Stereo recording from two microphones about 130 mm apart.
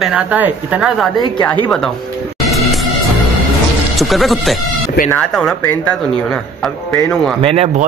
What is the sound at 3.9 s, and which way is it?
Speech, centre (ahead or behind).